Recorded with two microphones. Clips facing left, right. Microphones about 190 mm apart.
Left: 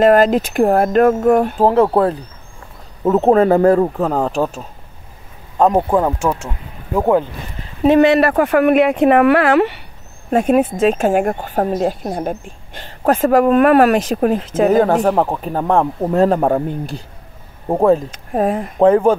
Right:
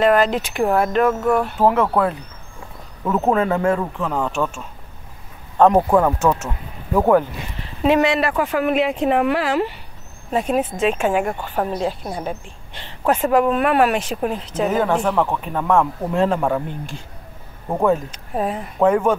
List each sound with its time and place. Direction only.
0.0 s speech: 45° left (ahead or behind)
1.6 s speech: 30° left (ahead or behind)
5.9 s speech: 15° left (ahead or behind)
7.9 s speech: 55° left (ahead or behind)
10.3 s speech: 55° left (ahead or behind)
10.9 s speech: 40° left (ahead or behind)
18.1 s speech: 50° left (ahead or behind)
18.8 s speech: 30° left (ahead or behind)